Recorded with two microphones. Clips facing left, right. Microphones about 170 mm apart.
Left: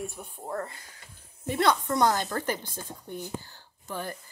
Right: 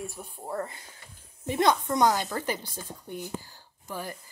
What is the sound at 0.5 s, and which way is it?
Speech, 20° right (ahead or behind).